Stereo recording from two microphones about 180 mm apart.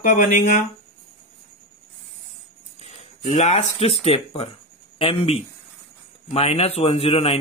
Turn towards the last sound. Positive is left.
turn(degrees=35)  # may be behind; listen again after turning